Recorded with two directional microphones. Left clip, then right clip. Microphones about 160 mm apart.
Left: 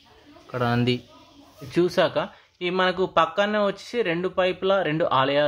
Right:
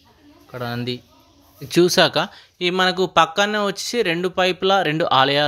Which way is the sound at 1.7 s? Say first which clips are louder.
Right 6 dB; 35° right (ahead or behind).